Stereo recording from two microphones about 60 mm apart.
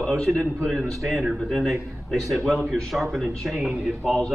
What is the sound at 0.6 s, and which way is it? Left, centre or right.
A man's voice, centre.